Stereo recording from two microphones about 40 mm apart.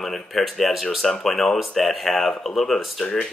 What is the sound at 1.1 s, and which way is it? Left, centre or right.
Speech, centre.